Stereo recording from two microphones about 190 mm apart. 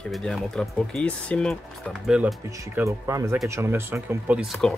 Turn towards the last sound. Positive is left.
turn(degrees=0)  # may be behind; listen again after turning